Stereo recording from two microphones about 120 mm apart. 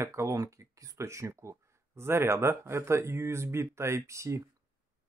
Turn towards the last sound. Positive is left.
turn(degrees=-25)  # may be behind; listen again after turning